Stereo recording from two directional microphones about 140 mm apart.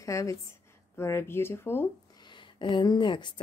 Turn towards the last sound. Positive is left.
turn(degrees=35)  # may be behind; listen again after turning